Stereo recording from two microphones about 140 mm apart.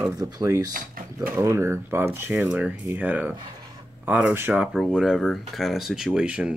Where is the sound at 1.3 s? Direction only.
20° right (ahead or behind).